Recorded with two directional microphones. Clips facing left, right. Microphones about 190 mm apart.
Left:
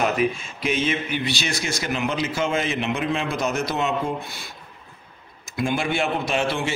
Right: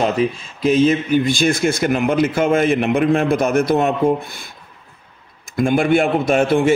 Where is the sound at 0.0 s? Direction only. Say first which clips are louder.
Right 4 dB; 30° right (ahead or behind); by 4.5 s 55° right (ahead or behind).